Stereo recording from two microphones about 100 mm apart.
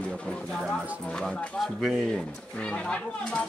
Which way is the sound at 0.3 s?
5° left (ahead or behind).